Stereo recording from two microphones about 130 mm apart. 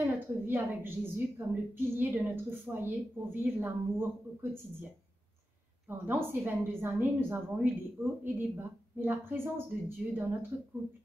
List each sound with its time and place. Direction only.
0.0 s a woman's voice: 15° right (ahead or behind)
5.9 s a woman's voice: 15° right (ahead or behind)